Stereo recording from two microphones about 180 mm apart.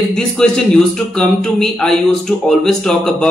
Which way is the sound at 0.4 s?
5° left (ahead or behind).